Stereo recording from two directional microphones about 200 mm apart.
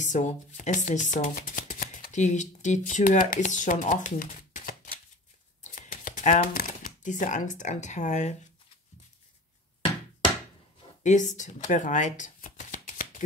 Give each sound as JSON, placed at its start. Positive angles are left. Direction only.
{"t": 0.0, "sound": "speech", "side_deg": 40}
{"t": 11.0, "sound": "shuffling cards", "side_deg": 35}